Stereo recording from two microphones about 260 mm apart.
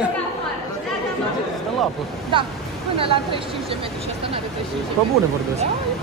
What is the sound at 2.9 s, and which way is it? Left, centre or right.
Speech, right.